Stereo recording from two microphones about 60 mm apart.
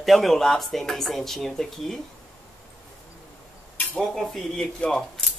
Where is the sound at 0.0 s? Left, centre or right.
Centre.